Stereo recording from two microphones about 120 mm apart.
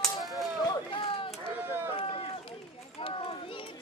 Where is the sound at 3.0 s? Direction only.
45° left (ahead or behind).